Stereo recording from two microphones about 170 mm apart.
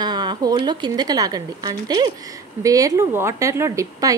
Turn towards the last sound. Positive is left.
turn(degrees=-20)  # may be behind; listen again after turning